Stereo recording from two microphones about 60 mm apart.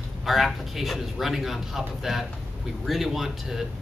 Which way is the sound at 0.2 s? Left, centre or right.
Centre.